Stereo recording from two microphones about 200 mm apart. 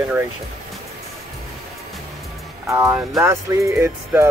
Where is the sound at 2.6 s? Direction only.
15° right (ahead or behind).